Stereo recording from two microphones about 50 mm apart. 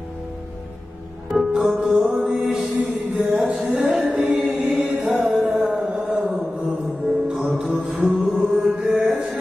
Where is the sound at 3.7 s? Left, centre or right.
Centre.